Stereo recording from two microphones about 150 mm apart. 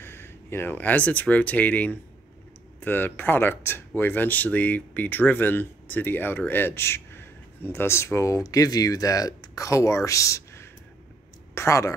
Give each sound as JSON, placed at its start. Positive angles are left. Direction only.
{"t": 0.0, "sound": "speech", "side_deg": 15}